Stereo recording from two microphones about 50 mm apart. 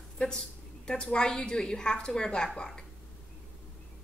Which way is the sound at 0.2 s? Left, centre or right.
Left.